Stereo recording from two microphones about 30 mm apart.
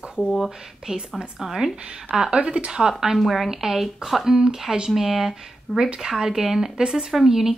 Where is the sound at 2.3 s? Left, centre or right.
Right.